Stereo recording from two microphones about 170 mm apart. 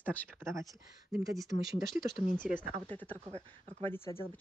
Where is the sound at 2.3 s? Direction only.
50° left (ahead or behind).